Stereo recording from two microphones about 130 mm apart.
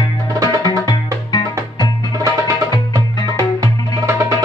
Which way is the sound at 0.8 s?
35° left (ahead or behind).